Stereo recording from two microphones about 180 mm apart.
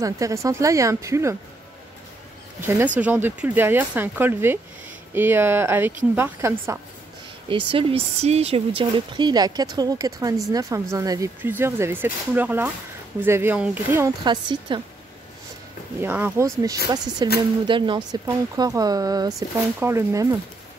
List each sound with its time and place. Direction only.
0.0 s speech: 15° right (ahead or behind)
2.6 s speech: 10° right (ahead or behind)
7.4 s speech: 30° right (ahead or behind); by 14.1 s 10° right (ahead or behind)
14.2 s speech: 25° right (ahead or behind)
16.0 s speech: 10° right (ahead or behind)